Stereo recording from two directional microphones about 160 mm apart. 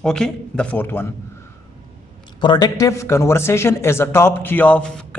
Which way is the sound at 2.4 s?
25° left (ahead or behind).